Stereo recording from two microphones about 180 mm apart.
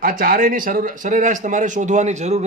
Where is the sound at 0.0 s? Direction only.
50° right (ahead or behind).